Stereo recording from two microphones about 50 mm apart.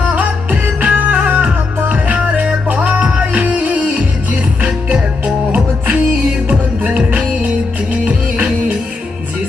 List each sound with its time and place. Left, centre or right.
0.1 s music: right